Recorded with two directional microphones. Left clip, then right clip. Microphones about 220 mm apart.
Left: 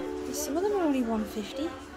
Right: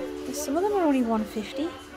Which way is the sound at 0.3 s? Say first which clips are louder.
Right 4 dB; 15° right (ahead or behind).